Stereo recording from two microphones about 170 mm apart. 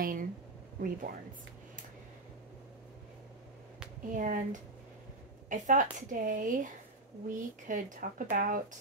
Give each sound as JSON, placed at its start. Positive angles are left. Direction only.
{"t": 0.0, "sound": "a sound", "side_deg": -55}
{"t": 0.7, "sound": "speech", "side_deg": -55}
{"t": 4.1, "sound": "speech", "side_deg": -50}